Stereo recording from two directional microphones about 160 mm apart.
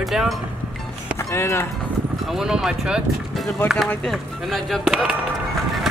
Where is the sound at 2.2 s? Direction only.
Centre (ahead or behind).